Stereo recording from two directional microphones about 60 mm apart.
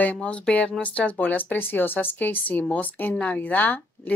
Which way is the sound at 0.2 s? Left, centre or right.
Left.